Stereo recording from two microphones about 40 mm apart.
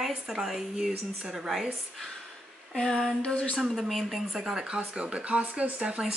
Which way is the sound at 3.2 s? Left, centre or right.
Left.